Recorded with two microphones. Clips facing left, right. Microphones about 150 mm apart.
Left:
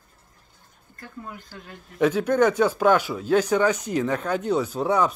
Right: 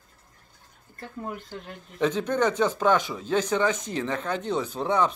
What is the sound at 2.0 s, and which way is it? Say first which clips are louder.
Speech: left 5 dB; 10° left (ahead or behind).